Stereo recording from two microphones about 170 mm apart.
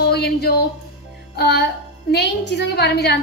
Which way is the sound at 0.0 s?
70° left (ahead or behind).